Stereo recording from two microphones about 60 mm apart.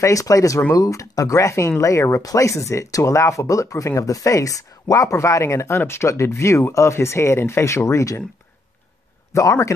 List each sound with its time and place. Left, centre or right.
0.0 s speech: left
5.1 s speech: left
5.7 s speech: left
9.3 s speech: left